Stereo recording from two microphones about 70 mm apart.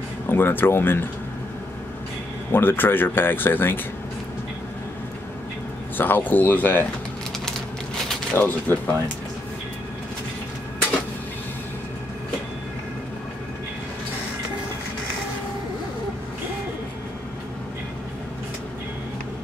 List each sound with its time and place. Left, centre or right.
0.3 s speech: left
2.5 s speech: left
5.9 s speech: left
8.4 s speech: left